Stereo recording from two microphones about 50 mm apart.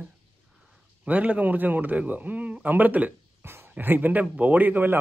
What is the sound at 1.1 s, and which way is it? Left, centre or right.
A man's voice, right.